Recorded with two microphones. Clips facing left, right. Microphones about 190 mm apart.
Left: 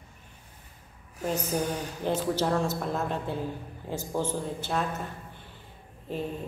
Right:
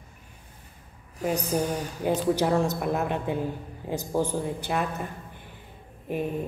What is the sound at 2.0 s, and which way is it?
A man's voice, 10° right (ahead or behind).